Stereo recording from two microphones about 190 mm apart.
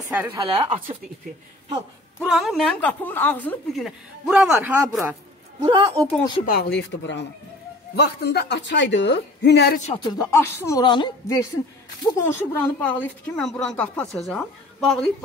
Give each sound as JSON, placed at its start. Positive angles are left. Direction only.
{"t": 0.1, "sound": "speech", "side_deg": -10}
{"t": 0.6, "sound": "speech", "side_deg": -35}
{"t": 2.2, "sound": "speech", "side_deg": 0}
{"t": 5.7, "sound": "speech", "side_deg": -30}
{"t": 6.4, "sound": "speech", "side_deg": 55}
{"t": 10.0, "sound": "speech", "side_deg": 15}